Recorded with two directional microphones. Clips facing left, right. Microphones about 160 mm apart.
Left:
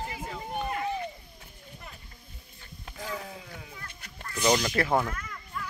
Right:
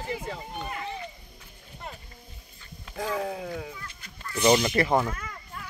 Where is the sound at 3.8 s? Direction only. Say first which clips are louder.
Right 1 dB; 50° left (ahead or behind).